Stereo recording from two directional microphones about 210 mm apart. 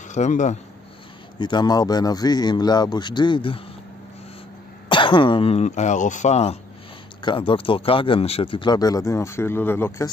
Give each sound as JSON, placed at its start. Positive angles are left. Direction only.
{"t": 0.1, "sound": "speech", "side_deg": 35}
{"t": 1.4, "sound": "speech", "side_deg": 20}
{"t": 4.8, "sound": "speech", "side_deg": 25}